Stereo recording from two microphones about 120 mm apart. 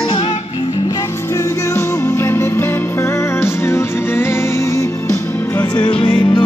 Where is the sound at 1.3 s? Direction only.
25° left (ahead or behind).